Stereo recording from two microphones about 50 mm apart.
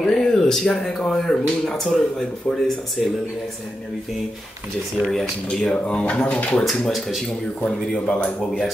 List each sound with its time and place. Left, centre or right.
0.1 s a sound: centre
0.7 s speech: centre
3.0 s speech: centre
5.0 s speech: centre
6.6 s speech: centre
7.6 s speech: left